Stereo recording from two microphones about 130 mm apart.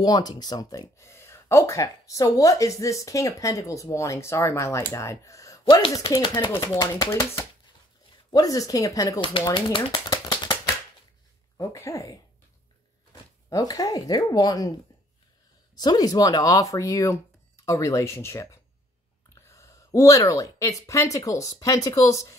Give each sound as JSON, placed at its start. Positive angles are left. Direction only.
{"t": 0.0, "sound": "speech", "side_deg": 30}
{"t": 9.5, "sound": "typewriter", "side_deg": 40}
{"t": 11.5, "sound": "speech", "side_deg": 25}
{"t": 13.5, "sound": "speech", "side_deg": 30}
{"t": 15.7, "sound": "speech", "side_deg": 30}